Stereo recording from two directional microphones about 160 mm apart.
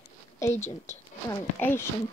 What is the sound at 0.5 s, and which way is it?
Speech, 45° left (ahead or behind).